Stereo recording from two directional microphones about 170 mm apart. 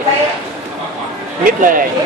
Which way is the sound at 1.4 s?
55° right (ahead or behind).